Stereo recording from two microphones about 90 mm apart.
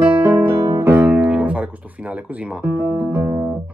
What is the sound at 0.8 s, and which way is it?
Music, 20° right (ahead or behind).